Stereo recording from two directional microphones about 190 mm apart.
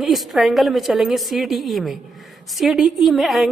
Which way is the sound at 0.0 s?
Centre (ahead or behind).